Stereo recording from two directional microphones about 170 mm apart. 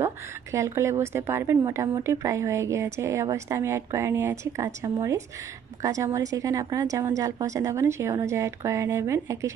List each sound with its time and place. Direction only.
0.0 s a woman's voice: 15° right (ahead or behind)